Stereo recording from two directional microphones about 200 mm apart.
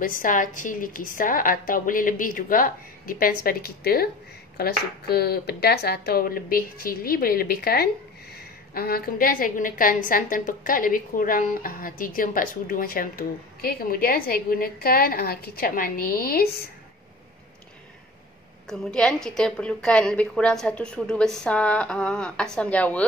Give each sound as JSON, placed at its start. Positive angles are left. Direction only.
{"t": 0.0, "sound": "a woman's voice", "side_deg": 40}
{"t": 18.7, "sound": "a woman's voice", "side_deg": 5}